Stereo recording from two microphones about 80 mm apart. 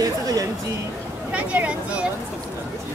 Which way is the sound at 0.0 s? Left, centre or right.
Right.